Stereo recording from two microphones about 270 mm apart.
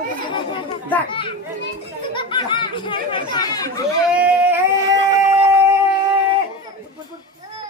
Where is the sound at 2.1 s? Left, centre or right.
Centre.